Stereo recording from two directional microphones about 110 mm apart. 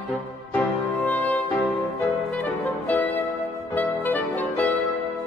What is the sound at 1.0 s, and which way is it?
Music, 15° left (ahead or behind).